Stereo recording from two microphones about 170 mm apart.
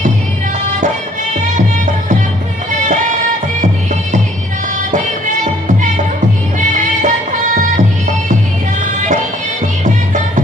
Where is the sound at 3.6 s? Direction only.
45° right (ahead or behind).